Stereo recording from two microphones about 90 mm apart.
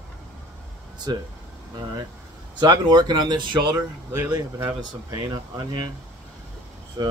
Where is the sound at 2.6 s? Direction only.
55° right (ahead or behind).